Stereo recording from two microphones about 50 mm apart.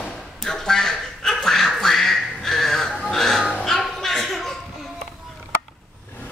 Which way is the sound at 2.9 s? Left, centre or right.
Centre.